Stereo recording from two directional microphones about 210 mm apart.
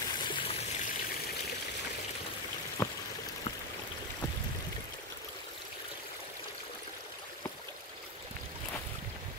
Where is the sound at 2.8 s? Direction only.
10° left (ahead or behind).